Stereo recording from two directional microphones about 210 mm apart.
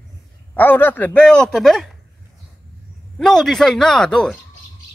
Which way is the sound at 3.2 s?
Centre (ahead or behind).